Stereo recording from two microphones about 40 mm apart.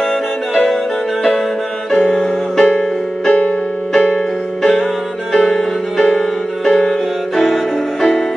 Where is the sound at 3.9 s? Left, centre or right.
Centre.